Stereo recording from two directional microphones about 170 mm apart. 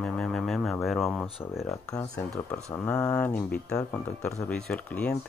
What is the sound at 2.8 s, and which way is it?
Speech, 10° left (ahead or behind).